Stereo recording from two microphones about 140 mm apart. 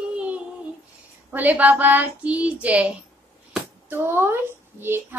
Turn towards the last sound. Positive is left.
turn(degrees=-15)  # may be behind; listen again after turning